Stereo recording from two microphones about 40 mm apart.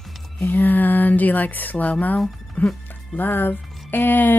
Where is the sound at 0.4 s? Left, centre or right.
Left.